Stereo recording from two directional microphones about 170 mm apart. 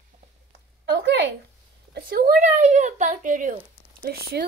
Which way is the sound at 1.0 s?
90° right.